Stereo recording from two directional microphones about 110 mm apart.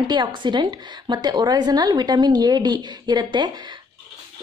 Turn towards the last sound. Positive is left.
turn(degrees=-40)  # may be behind; listen again after turning